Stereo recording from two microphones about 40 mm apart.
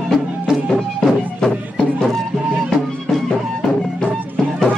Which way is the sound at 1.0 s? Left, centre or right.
Centre.